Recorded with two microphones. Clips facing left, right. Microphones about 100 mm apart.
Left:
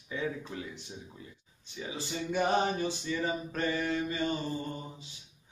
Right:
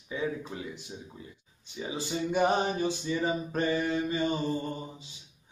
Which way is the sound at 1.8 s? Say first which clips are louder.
Right 4 dB; 20° right (ahead or behind).